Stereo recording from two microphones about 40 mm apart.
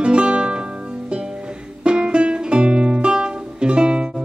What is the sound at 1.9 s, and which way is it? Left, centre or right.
Music, right.